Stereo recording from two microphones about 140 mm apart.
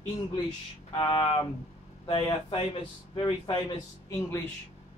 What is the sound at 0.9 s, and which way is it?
Speech, 35° left (ahead or behind).